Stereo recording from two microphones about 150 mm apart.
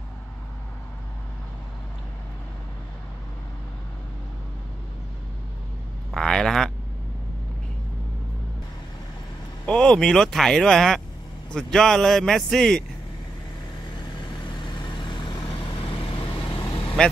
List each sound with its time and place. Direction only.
6.1 s vehicle: 5° left (ahead or behind)
9.7 s speech: 5° left (ahead or behind)
14.2 s vehicle: 30° left (ahead or behind)
15.5 s vehicle: 40° left (ahead or behind)
17.0 s speech: 5° left (ahead or behind)